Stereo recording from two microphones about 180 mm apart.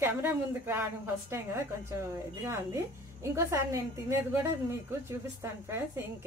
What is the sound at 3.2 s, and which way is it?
A woman's voice, 15° right (ahead or behind).